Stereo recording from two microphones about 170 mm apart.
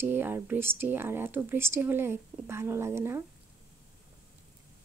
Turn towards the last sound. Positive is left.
turn(degrees=-15)  # may be behind; listen again after turning